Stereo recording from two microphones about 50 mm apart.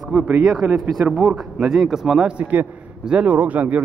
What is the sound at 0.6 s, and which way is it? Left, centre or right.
Speech, right.